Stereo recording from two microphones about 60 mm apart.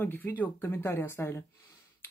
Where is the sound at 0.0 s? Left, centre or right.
Left.